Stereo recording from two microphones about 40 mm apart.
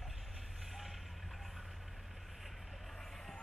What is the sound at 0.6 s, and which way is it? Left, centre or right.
Vehicle, centre.